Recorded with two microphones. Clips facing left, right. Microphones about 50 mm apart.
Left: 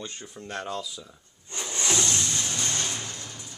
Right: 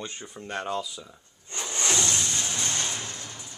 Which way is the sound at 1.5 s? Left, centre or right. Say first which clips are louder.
Even; centre.